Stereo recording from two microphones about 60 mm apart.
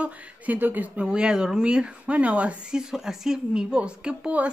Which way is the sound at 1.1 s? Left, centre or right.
Centre.